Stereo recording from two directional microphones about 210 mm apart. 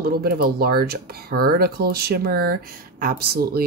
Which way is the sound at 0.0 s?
45° right (ahead or behind).